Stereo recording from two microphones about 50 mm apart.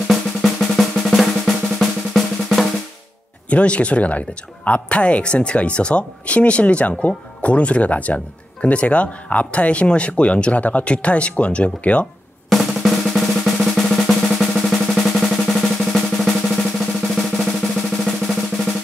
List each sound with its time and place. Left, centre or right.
0.1 s drum: centre
3.4 s speech: left
12.4 s drum: centre
18.2 s drum roll: centre